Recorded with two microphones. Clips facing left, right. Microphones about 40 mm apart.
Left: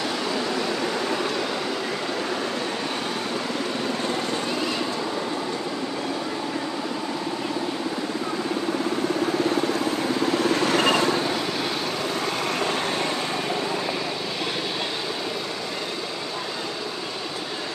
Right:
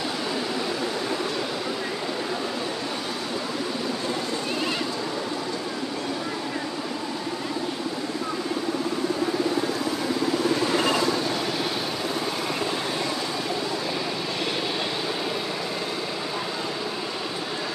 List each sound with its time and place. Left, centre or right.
10.5 s vehicle: left